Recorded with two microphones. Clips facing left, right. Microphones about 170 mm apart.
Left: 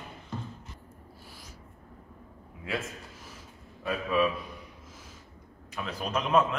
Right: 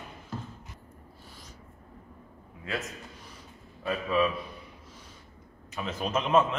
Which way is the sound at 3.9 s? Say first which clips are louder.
Even; 5° left (ahead or behind).